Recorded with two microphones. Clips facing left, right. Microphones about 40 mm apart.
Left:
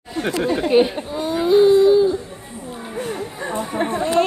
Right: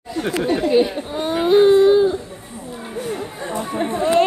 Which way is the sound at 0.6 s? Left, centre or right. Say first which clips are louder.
Left 1 dB; left.